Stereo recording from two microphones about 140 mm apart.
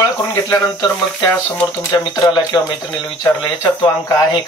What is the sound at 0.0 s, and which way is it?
Speech, 20° left (ahead or behind).